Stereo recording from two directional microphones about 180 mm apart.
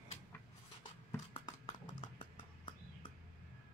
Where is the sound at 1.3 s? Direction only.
25° left (ahead or behind).